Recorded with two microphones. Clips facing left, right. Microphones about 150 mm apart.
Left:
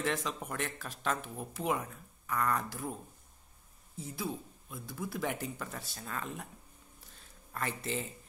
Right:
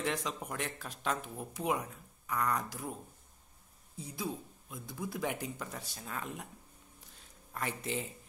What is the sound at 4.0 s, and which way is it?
A man's voice, 15° right (ahead or behind).